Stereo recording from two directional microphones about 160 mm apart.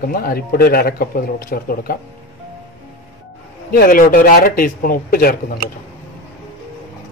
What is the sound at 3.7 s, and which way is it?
A man's voice, 65° left (ahead or behind).